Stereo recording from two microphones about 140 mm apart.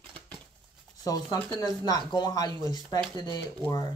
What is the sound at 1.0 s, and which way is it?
Speech, 25° left (ahead or behind).